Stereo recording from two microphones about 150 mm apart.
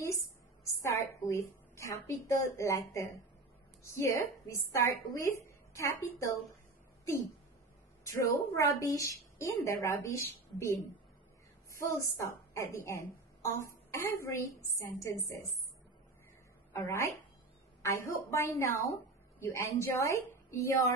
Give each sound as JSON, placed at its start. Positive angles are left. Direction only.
{"t": 0.7, "sound": "a sound", "side_deg": 20}
{"t": 2.0, "sound": "a woman's voice", "side_deg": 20}
{"t": 8.0, "sound": "a woman's voice", "side_deg": 20}
{"t": 11.7, "sound": "a woman's voice", "side_deg": 20}
{"t": 16.7, "sound": "a woman's voice", "side_deg": 20}